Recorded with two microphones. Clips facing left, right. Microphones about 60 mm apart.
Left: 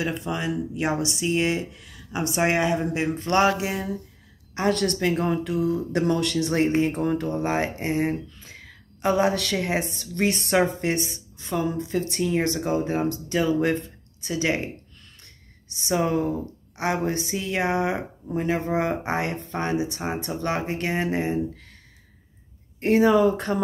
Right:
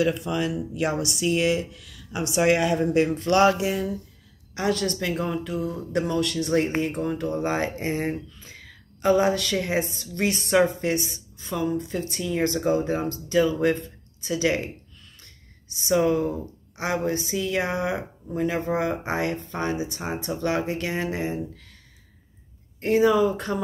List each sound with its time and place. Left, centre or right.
0.0 s speech: left
3.7 s speech: left
5.1 s speech: left
5.9 s speech: left
7.4 s speech: left
9.0 s speech: left
9.6 s speech: left
9.8 s speech: left
15.7 s speech: left
22.8 s speech: left